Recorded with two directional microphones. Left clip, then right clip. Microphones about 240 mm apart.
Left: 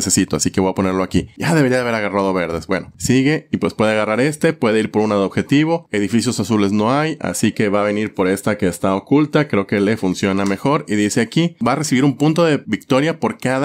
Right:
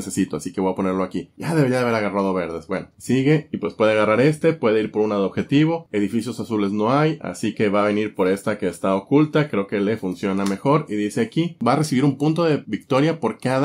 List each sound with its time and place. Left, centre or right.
0.1 s speech: left